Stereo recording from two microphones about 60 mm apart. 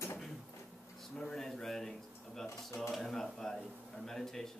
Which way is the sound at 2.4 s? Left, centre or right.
Left.